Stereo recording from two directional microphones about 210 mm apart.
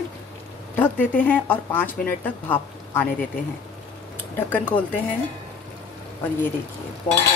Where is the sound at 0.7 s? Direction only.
10° left (ahead or behind).